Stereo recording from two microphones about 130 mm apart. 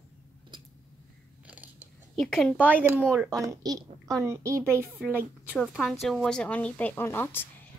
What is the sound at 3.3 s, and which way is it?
A child's voice, 25° right (ahead or behind).